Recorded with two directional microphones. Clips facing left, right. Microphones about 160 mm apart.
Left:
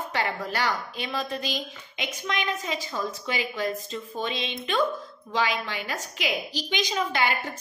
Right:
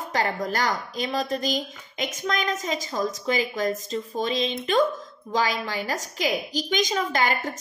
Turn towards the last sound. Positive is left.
turn(degrees=-40)  # may be behind; listen again after turning